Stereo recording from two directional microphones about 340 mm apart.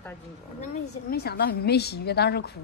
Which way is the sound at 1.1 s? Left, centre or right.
Left.